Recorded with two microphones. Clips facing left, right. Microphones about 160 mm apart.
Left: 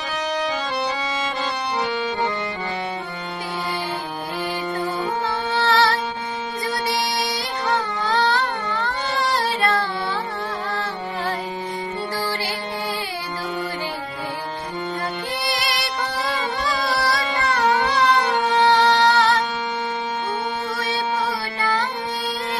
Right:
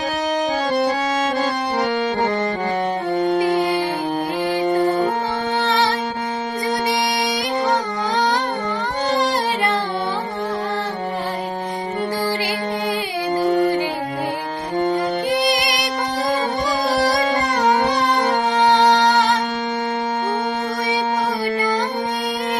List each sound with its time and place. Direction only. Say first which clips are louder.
1.4 s music: right 4 dB; 45° right (ahead or behind)
3.4 s music: right 10 dB; 15° right (ahead or behind)
5.6 s music: left 2 dB; 20° right (ahead or behind)
7.0 s music: right 4 dB; 15° right (ahead or behind)
13.4 s music: right 12 dB; 45° right (ahead or behind)
15.3 s music: right 6 dB; 15° right (ahead or behind)
17.2 s a sound: right 5 dB; 45° right (ahead or behind)
17.5 s music: left 2 dB; 15° right (ahead or behind)